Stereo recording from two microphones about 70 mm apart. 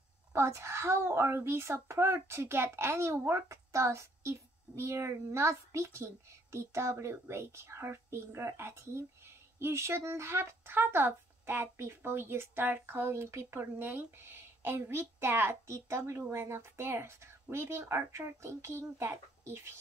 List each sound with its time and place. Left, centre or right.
0.3 s speech: right